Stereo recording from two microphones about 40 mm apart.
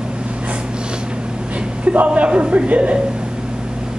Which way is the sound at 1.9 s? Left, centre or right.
Right.